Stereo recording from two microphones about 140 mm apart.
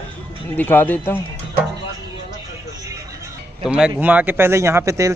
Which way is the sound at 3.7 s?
10° right (ahead or behind).